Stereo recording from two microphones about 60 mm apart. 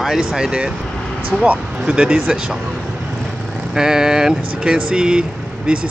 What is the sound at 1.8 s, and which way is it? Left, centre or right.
Speech, centre.